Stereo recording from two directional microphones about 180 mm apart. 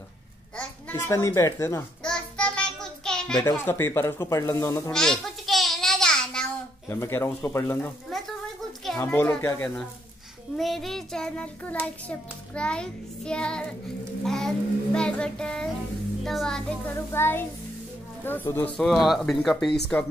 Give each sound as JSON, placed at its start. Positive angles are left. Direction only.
{"t": 0.6, "sound": "a child's voice", "side_deg": 10}
{"t": 2.0, "sound": "child singing", "side_deg": 5}
{"t": 3.3, "sound": "speech", "side_deg": 15}
{"t": 4.9, "sound": "babbling", "side_deg": 5}
{"t": 6.9, "sound": "speech", "side_deg": 15}
{"t": 10.6, "sound": "child singing", "side_deg": 0}
{"t": 16.3, "sound": "speech", "side_deg": 5}
{"t": 18.9, "sound": "child singing", "side_deg": 0}